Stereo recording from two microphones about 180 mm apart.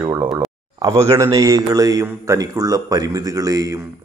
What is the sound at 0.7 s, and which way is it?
A man's voice, 20° right (ahead or behind).